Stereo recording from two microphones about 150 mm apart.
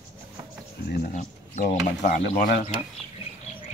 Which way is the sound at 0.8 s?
80° left.